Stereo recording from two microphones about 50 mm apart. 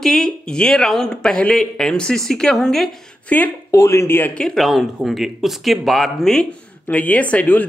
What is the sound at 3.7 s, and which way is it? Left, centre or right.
Speech, left.